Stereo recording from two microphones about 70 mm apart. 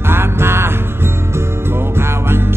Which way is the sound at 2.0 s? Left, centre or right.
Right.